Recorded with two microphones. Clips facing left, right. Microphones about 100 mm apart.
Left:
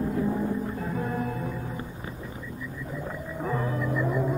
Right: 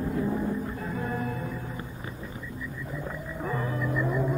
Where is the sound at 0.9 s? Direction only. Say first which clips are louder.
Left 1 dB; 15° left (ahead or behind).